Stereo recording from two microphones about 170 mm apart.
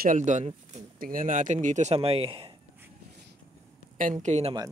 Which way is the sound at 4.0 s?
45° right (ahead or behind).